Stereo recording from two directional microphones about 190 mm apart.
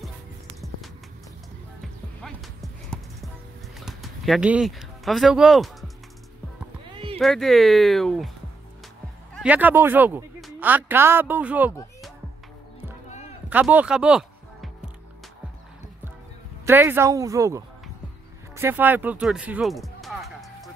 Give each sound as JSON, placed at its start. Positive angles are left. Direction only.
{"t": 1.8, "sound": "music", "side_deg": 0}
{"t": 3.8, "sound": "speech", "side_deg": 0}
{"t": 7.2, "sound": "speech", "side_deg": 0}
{"t": 9.3, "sound": "speech", "side_deg": -5}
{"t": 13.5, "sound": "music", "side_deg": -10}
{"t": 16.6, "sound": "speech", "side_deg": -10}
{"t": 18.6, "sound": "music", "side_deg": -10}